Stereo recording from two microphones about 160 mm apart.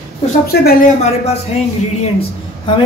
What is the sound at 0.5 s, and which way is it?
Speech, 85° left.